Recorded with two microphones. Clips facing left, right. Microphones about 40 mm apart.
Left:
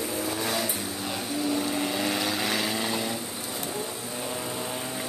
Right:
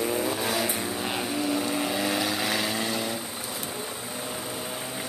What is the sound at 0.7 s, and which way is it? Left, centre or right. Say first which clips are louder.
Vehicle: right 3 dB; right.